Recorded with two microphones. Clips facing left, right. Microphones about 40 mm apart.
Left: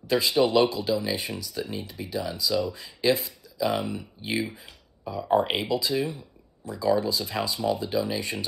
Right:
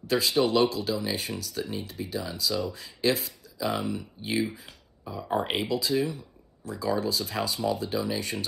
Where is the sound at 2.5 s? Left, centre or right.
Left.